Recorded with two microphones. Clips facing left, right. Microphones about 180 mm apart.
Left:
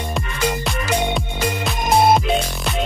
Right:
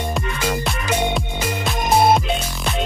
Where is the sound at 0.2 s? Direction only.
Centre (ahead or behind).